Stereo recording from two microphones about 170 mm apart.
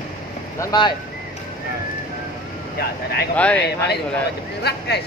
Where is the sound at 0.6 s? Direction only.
25° left (ahead or behind).